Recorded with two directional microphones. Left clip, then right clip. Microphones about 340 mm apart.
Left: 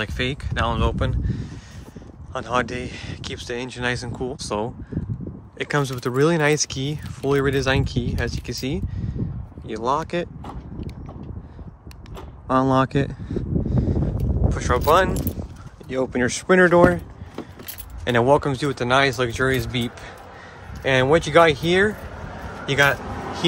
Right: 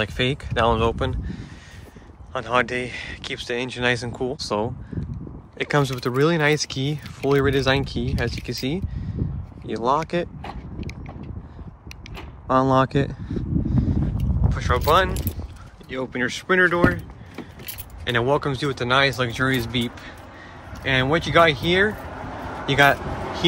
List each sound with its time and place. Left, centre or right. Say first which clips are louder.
0.0 s speech: right 2 dB; centre
12.2 s a sound: right 1 dB; centre
14.5 s speech: left 1 dB; centre
18.0 s speech: left 4 dB; centre
22.7 s vehicle: right 2 dB; centre